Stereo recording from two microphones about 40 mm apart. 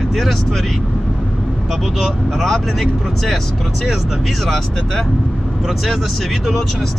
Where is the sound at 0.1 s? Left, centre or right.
Centre.